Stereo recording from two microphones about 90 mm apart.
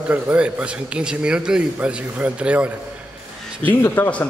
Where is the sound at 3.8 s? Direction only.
30° left (ahead or behind).